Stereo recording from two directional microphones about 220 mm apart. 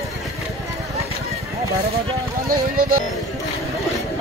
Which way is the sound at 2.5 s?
40° right (ahead or behind).